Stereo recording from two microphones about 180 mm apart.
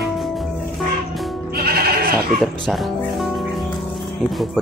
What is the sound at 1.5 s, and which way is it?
Goat, 60° right (ahead or behind).